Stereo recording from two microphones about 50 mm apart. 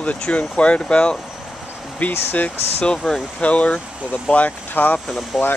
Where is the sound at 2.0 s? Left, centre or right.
Left.